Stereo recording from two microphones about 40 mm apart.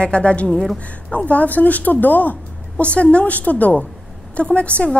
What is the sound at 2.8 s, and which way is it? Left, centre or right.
A woman's voice, left.